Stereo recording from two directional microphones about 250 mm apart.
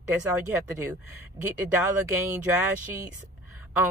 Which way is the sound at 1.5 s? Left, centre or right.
Centre.